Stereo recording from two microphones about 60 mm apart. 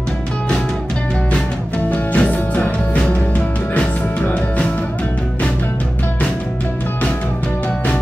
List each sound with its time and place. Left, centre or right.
1.9 s music: left